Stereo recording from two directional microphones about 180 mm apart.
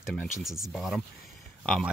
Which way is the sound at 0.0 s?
Centre (ahead or behind).